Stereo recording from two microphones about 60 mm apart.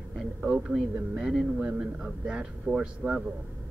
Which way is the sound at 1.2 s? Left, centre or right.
Centre.